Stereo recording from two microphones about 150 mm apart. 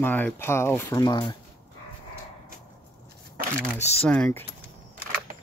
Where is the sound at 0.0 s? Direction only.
10° left (ahead or behind).